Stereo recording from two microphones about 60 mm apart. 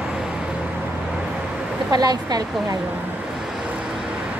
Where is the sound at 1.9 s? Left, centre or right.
Right.